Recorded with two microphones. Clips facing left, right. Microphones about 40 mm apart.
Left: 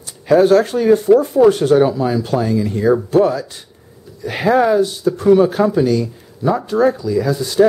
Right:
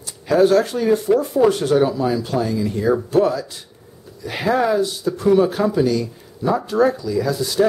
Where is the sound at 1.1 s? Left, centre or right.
Centre.